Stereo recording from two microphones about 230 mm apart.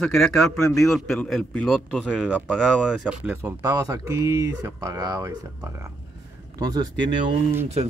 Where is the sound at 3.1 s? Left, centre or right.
Centre.